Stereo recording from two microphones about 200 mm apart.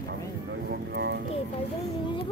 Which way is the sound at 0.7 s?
55° right (ahead or behind).